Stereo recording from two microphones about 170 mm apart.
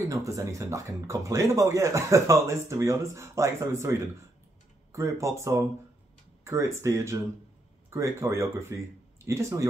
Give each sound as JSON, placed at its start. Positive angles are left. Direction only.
{"t": 0.0, "sound": "speech", "side_deg": -20}